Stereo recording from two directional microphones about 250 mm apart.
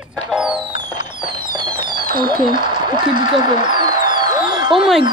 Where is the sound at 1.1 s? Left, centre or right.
Centre.